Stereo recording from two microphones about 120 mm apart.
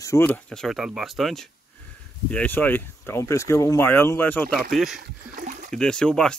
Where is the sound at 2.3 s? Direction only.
15° left (ahead or behind).